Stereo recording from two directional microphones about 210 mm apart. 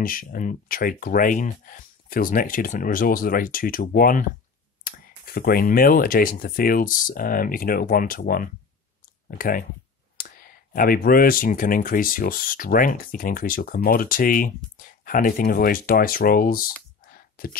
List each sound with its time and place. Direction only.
0.0 s speech: 40° left (ahead or behind)